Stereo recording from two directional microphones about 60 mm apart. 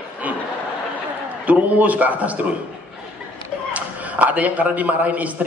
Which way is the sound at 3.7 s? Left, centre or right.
Right.